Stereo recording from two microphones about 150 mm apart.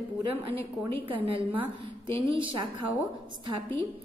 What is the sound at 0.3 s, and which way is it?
A woman's voice, 35° right (ahead or behind).